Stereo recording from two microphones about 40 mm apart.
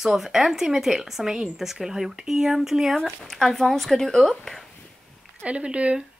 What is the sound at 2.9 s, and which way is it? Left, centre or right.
Speech, centre.